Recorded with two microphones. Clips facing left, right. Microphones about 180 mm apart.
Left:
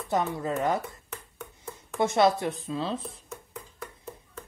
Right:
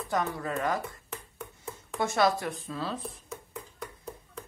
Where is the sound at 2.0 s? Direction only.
20° left (ahead or behind).